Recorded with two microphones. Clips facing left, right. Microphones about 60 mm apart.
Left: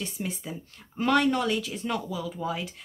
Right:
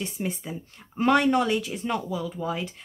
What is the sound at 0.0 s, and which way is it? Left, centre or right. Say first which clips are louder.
Speech: right 3 dB; centre.